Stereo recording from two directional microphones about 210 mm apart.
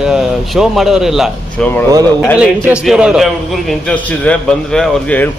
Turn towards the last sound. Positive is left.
turn(degrees=5)  # may be behind; listen again after turning